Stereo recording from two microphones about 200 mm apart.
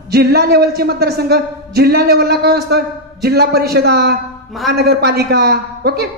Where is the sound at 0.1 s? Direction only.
50° right (ahead or behind).